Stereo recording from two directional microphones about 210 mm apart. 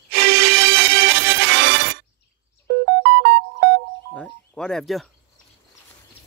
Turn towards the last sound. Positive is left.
turn(degrees=0)  # may be behind; listen again after turning